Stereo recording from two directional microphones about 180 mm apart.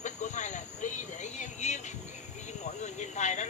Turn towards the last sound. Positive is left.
turn(degrees=40)  # may be behind; listen again after turning